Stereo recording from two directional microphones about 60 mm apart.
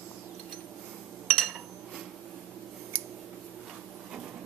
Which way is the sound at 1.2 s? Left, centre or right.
Centre.